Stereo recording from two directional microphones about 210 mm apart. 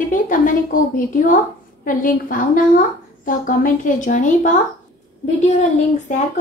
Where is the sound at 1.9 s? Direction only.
40° left (ahead or behind).